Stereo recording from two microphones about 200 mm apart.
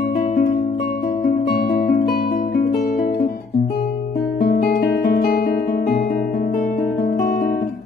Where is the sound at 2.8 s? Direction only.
45° left (ahead or behind).